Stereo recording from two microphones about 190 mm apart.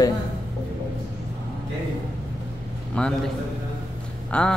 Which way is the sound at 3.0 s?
5° left (ahead or behind).